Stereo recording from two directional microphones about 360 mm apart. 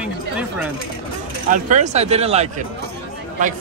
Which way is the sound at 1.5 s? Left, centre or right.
Centre.